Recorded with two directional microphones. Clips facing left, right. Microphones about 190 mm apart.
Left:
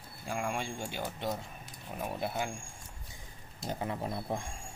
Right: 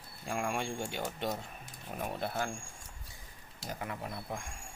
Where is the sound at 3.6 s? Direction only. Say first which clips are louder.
Left 4 dB; 25° left (ahead or behind).